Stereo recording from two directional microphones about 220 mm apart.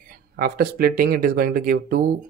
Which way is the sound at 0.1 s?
45° right (ahead or behind).